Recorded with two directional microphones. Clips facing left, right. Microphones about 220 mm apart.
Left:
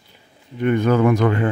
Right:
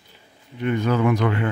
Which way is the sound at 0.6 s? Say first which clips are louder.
Left 4 dB; 50° left (ahead or behind).